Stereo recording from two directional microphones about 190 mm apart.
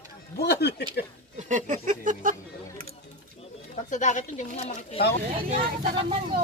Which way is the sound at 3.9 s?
40° left (ahead or behind).